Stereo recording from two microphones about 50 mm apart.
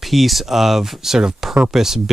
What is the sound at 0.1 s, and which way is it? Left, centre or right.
Speech, centre.